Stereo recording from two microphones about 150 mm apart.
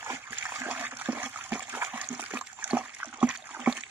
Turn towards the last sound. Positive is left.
turn(degrees=-10)  # may be behind; listen again after turning